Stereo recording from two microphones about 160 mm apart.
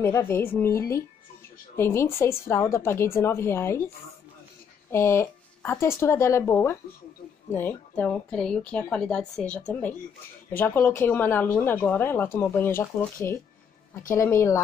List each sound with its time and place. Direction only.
0.0 s a woman's voice: 15° left (ahead or behind)
4.9 s a woman's voice: 15° left (ahead or behind)